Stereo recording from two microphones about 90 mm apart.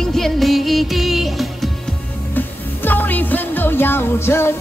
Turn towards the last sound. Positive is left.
turn(degrees=25)  # may be behind; listen again after turning